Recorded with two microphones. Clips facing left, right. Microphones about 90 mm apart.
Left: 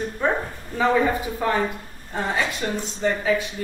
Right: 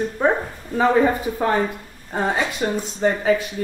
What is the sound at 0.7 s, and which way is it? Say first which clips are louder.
A woman's voice: right 3 dB; 40° right (ahead or behind).